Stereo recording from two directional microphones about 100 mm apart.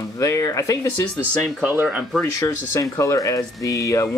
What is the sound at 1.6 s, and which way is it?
Speech, 15° right (ahead or behind).